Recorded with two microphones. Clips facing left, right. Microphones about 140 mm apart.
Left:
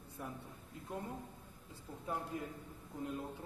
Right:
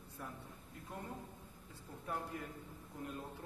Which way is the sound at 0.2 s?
20° left (ahead or behind).